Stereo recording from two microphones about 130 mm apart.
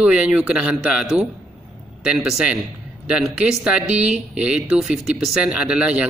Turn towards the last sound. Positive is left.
turn(degrees=-5)  # may be behind; listen again after turning